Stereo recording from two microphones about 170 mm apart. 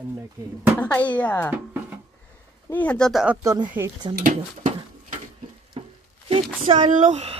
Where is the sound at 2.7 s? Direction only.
10° left (ahead or behind).